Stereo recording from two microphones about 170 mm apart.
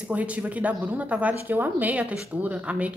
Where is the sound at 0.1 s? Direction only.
10° right (ahead or behind).